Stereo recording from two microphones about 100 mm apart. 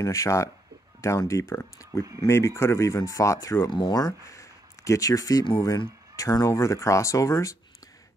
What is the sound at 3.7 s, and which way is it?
Speech, 45° left (ahead or behind).